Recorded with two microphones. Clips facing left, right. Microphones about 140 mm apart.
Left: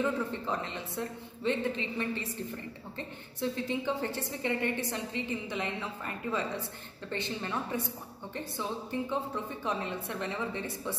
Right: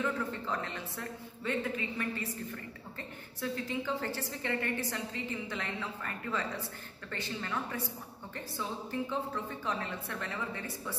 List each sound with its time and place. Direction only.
0.0 s speech: 20° left (ahead or behind)
9.1 s speech: 20° left (ahead or behind)